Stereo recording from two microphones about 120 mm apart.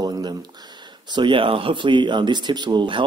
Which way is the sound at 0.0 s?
35° right (ahead or behind).